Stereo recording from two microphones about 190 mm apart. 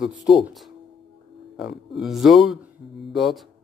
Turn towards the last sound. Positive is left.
turn(degrees=0)  # may be behind; listen again after turning